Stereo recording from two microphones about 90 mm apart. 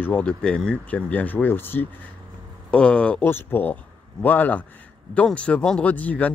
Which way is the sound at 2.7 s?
10° left (ahead or behind).